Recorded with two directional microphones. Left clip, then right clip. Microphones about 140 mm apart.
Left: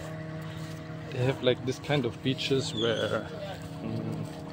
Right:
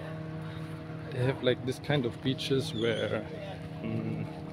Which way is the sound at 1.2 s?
Centre (ahead or behind).